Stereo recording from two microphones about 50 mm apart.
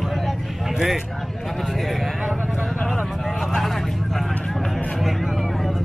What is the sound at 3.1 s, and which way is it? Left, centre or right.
Vehicle, centre.